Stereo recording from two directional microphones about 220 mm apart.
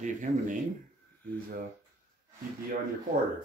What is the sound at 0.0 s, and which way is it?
Speech, 35° right (ahead or behind).